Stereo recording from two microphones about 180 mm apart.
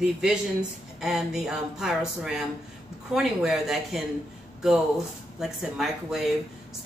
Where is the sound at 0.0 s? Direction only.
5° right (ahead or behind).